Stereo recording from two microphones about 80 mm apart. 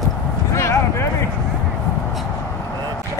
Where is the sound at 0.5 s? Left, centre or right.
Left.